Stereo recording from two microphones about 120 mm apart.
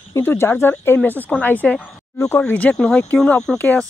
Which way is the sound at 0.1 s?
20° left (ahead or behind).